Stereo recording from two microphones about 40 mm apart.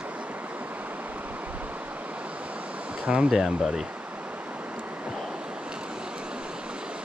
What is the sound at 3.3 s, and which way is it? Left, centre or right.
Speech, centre.